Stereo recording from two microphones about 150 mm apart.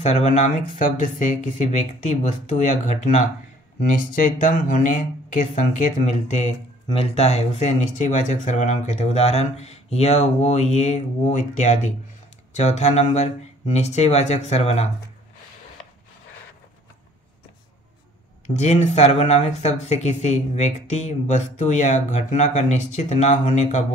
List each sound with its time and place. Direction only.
0.0 s speech: 50° left (ahead or behind)
6.9 s speech: 40° left (ahead or behind)
18.6 s speech: 50° left (ahead or behind)